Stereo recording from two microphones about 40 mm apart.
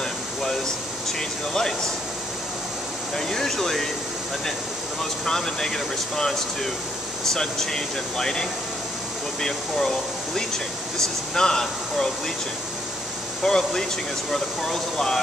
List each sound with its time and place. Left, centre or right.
1.5 s speech: centre
3.2 s speech: centre
5.2 s speech: centre
13.4 s speech: centre